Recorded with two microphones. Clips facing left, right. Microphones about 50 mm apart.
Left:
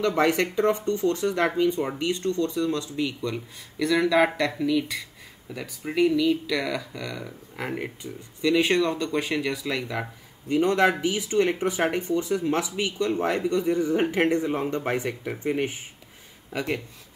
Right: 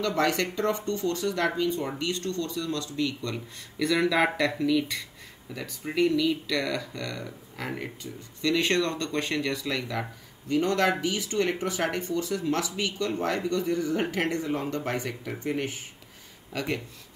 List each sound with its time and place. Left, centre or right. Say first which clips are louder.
0.0 s speech: left 4 dB; left
3.7 s speech: left 3 dB; centre